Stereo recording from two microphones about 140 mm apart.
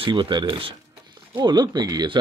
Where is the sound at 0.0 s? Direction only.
35° right (ahead or behind).